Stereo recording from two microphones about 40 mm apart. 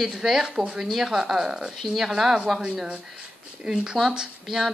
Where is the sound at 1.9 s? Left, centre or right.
Centre.